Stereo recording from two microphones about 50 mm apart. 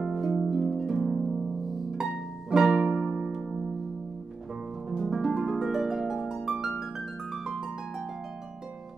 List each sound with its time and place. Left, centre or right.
0.1 s harp: centre
2.5 s music: centre
4.8 s harp: centre
6.3 s music: centre